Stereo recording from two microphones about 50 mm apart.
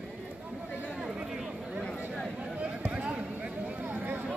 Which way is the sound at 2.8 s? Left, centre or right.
Right.